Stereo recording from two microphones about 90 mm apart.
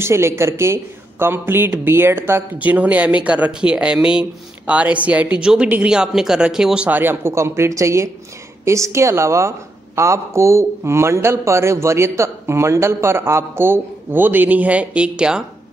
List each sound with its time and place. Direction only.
0.0 s speech: 30° right (ahead or behind); by 6.9 s 10° right (ahead or behind)
6.9 s a man's voice: 25° right (ahead or behind)